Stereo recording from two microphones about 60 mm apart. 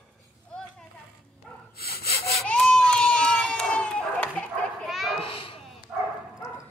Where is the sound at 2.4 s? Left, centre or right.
Centre.